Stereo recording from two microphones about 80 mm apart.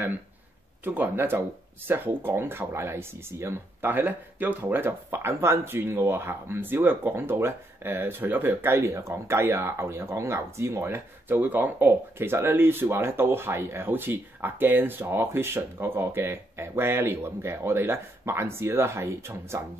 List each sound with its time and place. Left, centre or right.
0.8 s speech: right